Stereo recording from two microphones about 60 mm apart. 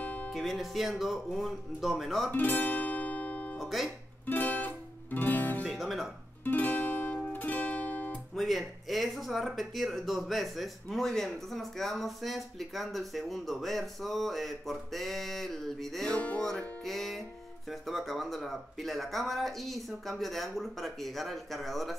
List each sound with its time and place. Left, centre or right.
0.0 s music: left
0.3 s speech: centre
2.3 s music: left
3.5 s music: centre
4.3 s music: left
5.7 s guitar: centre
6.4 s music: left
8.4 s speech: centre